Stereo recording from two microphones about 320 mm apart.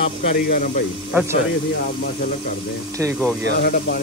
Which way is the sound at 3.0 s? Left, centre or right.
Centre.